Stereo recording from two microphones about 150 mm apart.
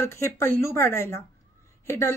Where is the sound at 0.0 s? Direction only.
15° left (ahead or behind).